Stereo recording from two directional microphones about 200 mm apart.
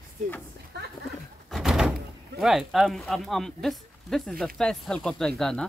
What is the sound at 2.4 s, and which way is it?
Speech, centre (ahead or behind).